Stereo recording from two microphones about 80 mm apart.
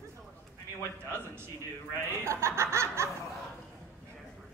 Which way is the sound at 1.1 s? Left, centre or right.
Right.